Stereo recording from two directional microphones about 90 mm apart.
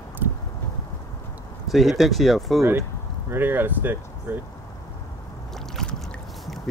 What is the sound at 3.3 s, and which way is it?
Speech, 20° right (ahead or behind).